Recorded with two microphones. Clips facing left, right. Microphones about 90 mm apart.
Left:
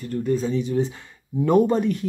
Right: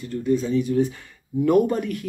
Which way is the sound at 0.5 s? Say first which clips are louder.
Right 2 dB; 25° left (ahead or behind).